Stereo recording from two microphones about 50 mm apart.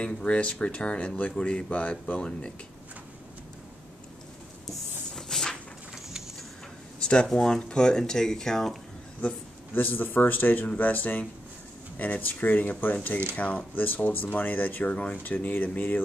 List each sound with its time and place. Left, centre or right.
0.0 s speech: left
4.6 s a sound: centre
7.3 s speech: centre
9.8 s speech: left